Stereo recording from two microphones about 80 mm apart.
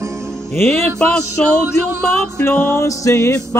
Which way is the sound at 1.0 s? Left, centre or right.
Centre.